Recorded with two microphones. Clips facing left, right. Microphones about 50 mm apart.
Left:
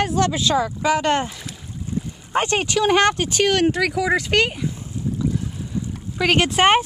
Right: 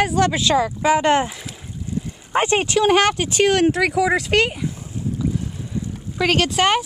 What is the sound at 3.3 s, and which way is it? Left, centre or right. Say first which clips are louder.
Speech: right 2 dB; right.